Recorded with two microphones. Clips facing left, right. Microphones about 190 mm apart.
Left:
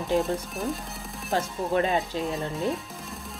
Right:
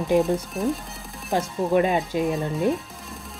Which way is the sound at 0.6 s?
Centre (ahead or behind).